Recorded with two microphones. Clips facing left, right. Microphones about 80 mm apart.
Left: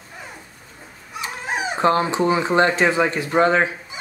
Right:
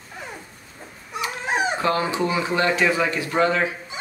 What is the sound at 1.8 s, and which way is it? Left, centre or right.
Speech, left.